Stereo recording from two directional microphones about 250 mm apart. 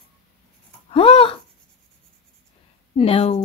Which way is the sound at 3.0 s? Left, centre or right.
Left.